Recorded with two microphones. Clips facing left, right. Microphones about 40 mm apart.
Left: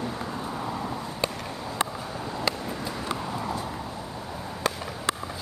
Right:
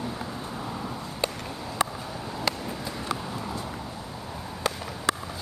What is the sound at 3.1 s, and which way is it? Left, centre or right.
Vehicle, centre.